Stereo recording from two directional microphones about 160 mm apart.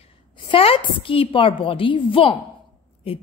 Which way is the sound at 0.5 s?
35° left (ahead or behind).